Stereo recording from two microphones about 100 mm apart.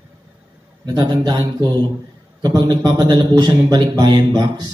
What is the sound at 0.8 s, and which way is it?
A man's voice, 45° right (ahead or behind).